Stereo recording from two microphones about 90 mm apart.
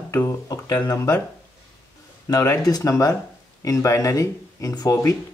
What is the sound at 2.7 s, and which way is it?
Speech, 40° left (ahead or behind).